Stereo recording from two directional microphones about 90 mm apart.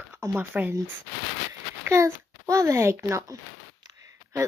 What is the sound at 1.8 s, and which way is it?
A child's voice, 30° right (ahead or behind).